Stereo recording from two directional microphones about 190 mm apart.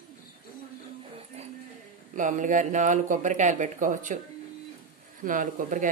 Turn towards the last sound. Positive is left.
turn(degrees=-45)  # may be behind; listen again after turning